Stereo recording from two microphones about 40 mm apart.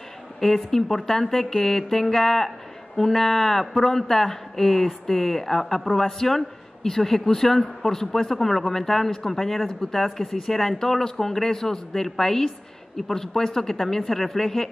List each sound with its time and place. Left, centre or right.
0.4 s a man's voice: centre
9.8 s a man's voice: centre